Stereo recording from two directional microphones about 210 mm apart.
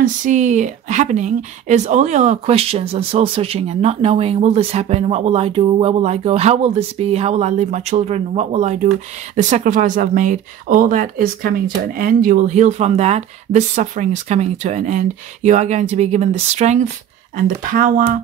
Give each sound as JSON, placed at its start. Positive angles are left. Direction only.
{"t": 0.0, "sound": "speech", "side_deg": -35}